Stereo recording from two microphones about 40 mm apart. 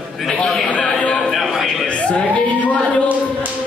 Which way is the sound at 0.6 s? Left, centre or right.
Left.